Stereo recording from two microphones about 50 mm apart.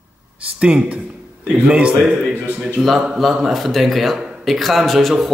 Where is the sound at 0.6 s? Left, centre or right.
Right.